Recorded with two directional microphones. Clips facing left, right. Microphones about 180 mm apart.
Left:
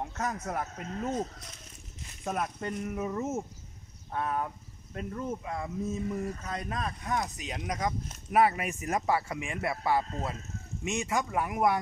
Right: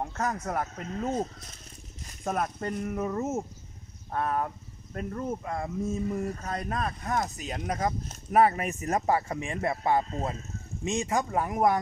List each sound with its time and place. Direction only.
0.0 s speech: 50° right (ahead or behind)
10.8 s speech: 35° right (ahead or behind)